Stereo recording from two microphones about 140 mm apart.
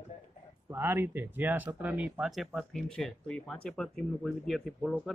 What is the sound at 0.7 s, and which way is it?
Speech, 15° right (ahead or behind).